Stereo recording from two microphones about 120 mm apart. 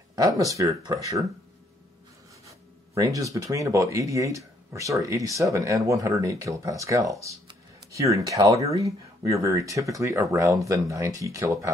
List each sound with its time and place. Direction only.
0.1 s speech: 30° right (ahead or behind)
2.4 s speech: 25° right (ahead or behind)